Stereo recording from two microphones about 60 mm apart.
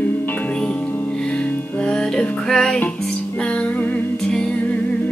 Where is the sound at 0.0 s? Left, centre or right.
Left.